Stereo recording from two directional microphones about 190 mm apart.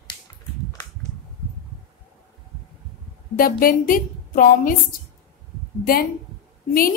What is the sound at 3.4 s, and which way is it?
A woman's voice, 50° left (ahead or behind).